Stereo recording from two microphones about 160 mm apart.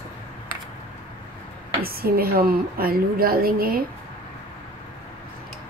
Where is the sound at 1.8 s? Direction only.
70° right (ahead or behind).